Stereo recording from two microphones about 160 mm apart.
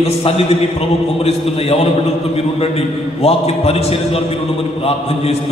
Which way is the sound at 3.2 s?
40° left (ahead or behind).